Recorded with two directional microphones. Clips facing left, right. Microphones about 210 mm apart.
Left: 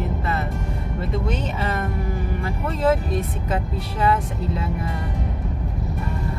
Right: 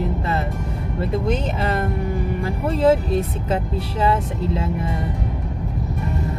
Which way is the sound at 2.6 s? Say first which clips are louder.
Right 4 dB; 30° right (ahead or behind).